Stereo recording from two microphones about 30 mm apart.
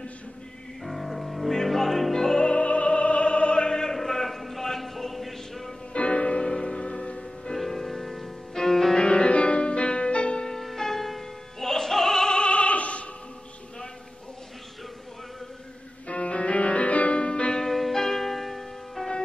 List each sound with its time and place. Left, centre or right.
0.8 s music: centre
2.5 s opera: left
3.9 s a sound: centre
5.9 s music: left
6.4 s music: left
7.5 s music: centre
8.9 s music: left
10.6 s music: centre
12.4 s opera: left
16.1 s music: left
17.1 s music: left
17.6 s music: centre